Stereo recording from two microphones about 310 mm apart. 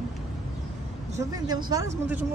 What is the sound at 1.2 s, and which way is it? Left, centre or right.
Speech, centre.